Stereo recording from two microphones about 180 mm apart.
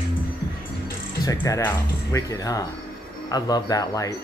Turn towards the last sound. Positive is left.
turn(degrees=20)  # may be behind; listen again after turning